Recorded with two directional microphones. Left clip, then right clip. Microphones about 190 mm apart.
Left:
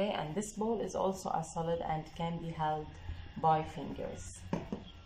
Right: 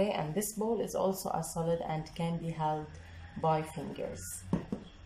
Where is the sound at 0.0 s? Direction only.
20° right (ahead or behind).